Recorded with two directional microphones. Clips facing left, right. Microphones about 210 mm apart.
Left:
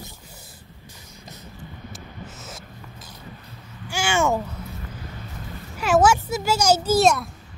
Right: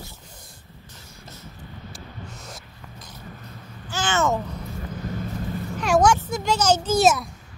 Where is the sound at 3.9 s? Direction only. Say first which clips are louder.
Left 1 dB; 10° left (ahead or behind).